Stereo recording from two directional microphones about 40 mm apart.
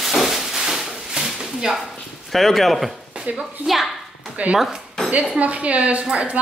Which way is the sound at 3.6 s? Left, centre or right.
Centre.